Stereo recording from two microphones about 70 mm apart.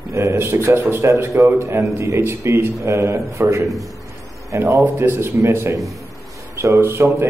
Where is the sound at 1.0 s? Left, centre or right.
Right.